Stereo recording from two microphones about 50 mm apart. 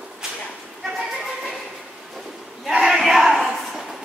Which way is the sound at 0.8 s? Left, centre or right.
Centre.